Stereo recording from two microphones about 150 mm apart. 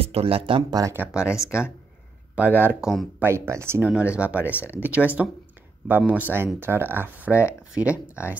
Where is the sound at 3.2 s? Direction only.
15° right (ahead or behind).